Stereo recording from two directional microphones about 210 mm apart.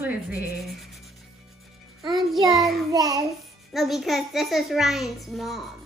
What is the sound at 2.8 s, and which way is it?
Speech, 15° right (ahead or behind).